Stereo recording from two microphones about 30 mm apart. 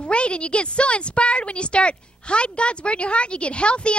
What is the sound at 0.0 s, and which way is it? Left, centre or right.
A woman's voice, left.